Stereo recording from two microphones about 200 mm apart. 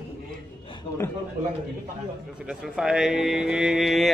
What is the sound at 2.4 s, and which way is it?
Speech, 5° right (ahead or behind).